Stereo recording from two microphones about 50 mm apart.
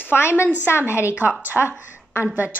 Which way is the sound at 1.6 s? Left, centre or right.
Right.